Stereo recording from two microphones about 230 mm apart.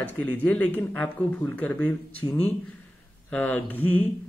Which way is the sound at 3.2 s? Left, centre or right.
Centre.